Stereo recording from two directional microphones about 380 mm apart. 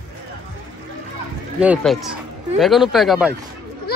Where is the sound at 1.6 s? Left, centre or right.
Centre.